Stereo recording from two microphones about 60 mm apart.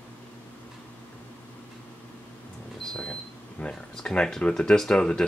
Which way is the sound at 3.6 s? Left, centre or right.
Centre.